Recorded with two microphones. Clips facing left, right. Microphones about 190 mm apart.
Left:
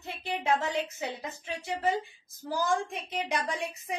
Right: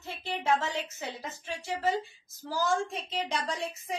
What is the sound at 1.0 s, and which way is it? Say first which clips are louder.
Speech: left 2 dB; 60° left (ahead or behind).